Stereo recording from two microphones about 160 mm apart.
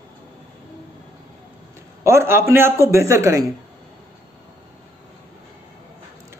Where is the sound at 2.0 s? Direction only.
15° right (ahead or behind).